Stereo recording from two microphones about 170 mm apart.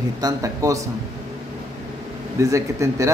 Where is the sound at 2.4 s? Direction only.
20° right (ahead or behind).